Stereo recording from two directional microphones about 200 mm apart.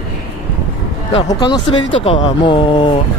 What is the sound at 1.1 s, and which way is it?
Speech, 25° left (ahead or behind).